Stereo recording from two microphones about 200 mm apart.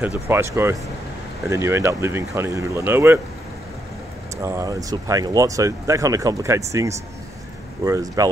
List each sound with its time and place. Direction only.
0.3 s speech: 10° right (ahead or behind)
4.4 s speech: 15° right (ahead or behind)